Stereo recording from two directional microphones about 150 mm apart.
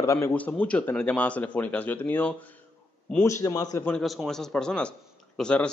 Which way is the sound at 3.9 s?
Centre (ahead or behind).